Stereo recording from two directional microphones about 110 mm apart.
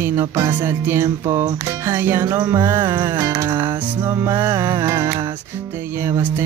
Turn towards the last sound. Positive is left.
turn(degrees=-25)  # may be behind; listen again after turning